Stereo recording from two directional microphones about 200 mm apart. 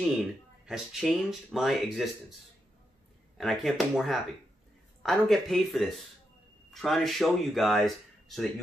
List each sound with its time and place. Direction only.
0.7 s speech: centre (ahead or behind)
3.3 s speech: centre (ahead or behind)